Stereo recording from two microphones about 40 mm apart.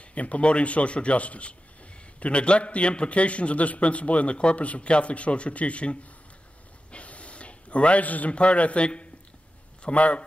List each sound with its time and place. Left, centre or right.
0.1 s a man's voice: left